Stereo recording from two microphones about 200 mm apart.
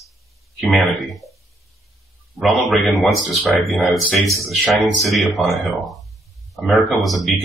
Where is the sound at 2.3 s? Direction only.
Centre (ahead or behind).